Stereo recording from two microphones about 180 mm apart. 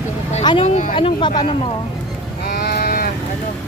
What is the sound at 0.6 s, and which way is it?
Speech, 40° left (ahead or behind).